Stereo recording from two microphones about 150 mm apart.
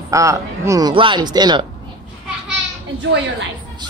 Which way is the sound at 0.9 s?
35° right (ahead or behind).